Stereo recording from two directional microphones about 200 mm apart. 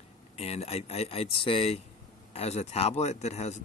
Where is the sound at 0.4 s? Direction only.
30° left (ahead or behind).